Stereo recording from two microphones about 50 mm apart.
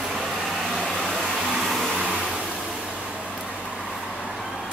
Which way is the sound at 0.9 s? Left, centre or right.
Centre.